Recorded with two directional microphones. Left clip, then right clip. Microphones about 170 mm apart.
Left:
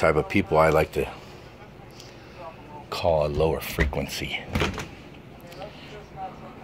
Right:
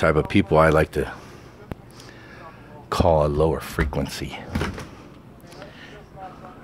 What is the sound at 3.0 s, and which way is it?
Speech, 70° right (ahead or behind).